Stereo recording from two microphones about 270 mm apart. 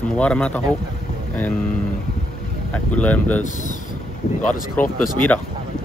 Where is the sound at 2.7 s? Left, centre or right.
Centre.